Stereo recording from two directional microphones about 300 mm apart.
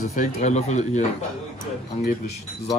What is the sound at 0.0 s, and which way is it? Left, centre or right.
Speech, left.